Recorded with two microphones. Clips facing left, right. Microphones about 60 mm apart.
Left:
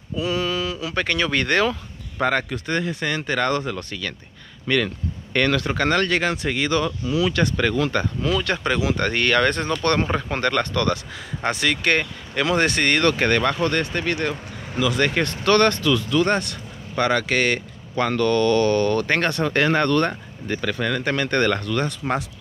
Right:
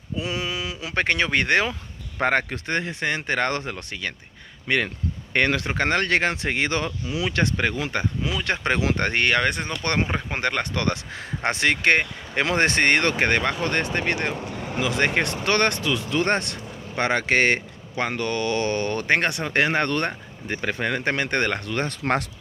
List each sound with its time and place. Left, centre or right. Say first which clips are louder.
0.1 s speech: left 4 dB; right
2.2 s speech: even; right; by 8.5 s centre
8.5 s speech: left 1 dB; right
18.0 s speech: left 6 dB; centre
22.0 s speech: right 3 dB; right